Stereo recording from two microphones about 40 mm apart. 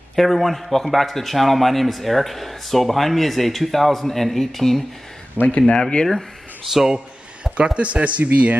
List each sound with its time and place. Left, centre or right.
0.1 s a man's voice: centre
5.5 s speech: left
6.0 s speech: centre
7.5 s speech: right